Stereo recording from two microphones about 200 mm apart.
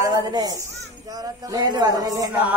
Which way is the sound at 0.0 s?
20° right (ahead or behind).